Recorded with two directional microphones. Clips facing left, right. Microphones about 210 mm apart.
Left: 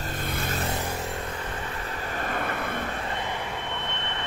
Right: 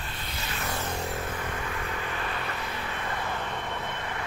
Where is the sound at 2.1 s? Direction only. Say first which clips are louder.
Left 4 dB; 45° left (ahead or behind).